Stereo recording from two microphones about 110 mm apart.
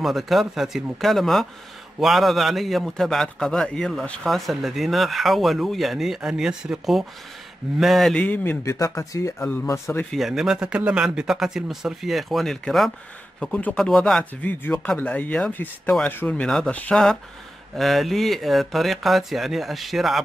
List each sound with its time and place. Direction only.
0.0 s speech: centre (ahead or behind)
8.6 s speech: 30° left (ahead or behind)
10.1 s speech: 5° right (ahead or behind)
14.4 s speech: 15° left (ahead or behind)
17.7 s speech: centre (ahead or behind)